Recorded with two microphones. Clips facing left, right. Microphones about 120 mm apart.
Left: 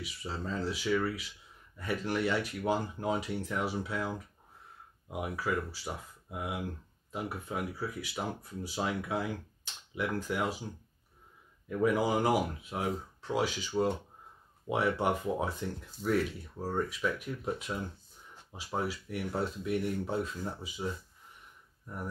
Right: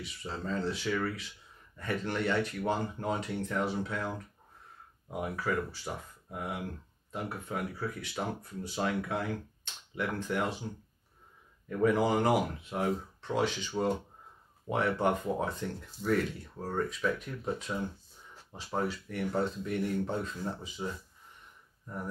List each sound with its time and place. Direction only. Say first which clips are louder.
0.0 s speech: even; 5° left (ahead or behind)
5.1 s speech: right 1 dB; 5° left (ahead or behind)